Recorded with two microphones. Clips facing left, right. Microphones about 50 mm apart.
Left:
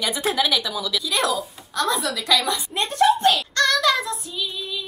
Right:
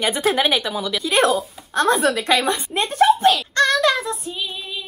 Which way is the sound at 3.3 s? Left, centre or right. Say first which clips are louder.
Right 3 dB; right.